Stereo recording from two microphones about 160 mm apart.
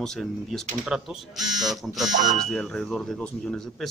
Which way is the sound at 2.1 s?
50° right (ahead or behind).